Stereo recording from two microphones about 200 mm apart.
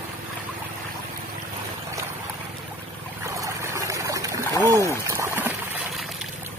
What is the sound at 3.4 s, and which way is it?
Boat, 15° right (ahead or behind).